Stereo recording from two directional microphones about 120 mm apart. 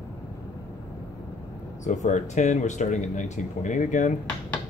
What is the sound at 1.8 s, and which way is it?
Speech, 85° left.